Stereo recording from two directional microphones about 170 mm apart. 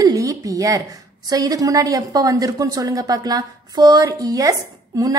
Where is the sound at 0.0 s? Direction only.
20° right (ahead or behind).